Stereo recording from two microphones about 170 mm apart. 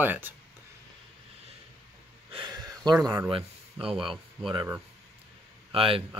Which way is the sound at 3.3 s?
30° right (ahead or behind).